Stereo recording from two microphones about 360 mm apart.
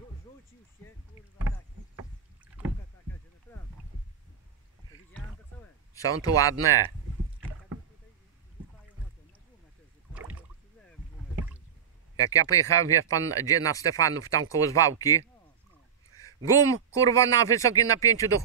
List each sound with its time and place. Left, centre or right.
3.5 s rowboat: centre
5.9 s speech: centre
12.2 s speech: centre
16.1 s a sound: right
16.4 s speech: centre